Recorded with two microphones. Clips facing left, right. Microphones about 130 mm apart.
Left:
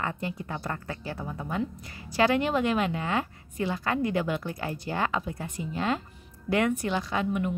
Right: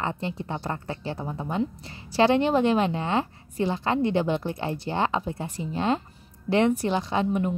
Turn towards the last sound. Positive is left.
turn(degrees=-30)  # may be behind; listen again after turning